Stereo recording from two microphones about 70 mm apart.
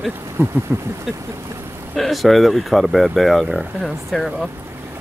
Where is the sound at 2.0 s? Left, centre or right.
Centre.